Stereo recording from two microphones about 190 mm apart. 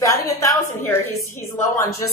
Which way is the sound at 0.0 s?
15° left (ahead or behind).